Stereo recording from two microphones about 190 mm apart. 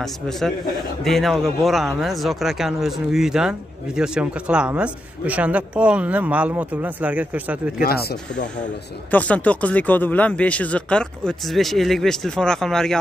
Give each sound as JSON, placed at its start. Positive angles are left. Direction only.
{"t": 0.0, "sound": "speech", "side_deg": 0}
{"t": 7.8, "sound": "speech", "side_deg": 55}
{"t": 9.1, "sound": "speech", "side_deg": 5}